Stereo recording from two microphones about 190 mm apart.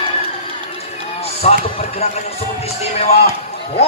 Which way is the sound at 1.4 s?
35° left (ahead or behind).